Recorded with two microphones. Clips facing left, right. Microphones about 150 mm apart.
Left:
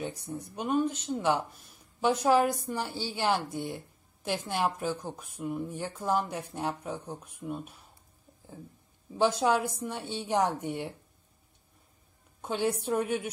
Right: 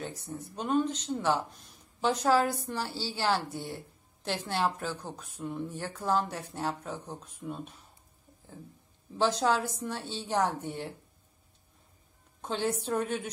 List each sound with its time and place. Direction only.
0.0 s a woman's voice: 15° left (ahead or behind)
9.4 s a woman's voice: 10° left (ahead or behind)
12.4 s a woman's voice: 10° left (ahead or behind)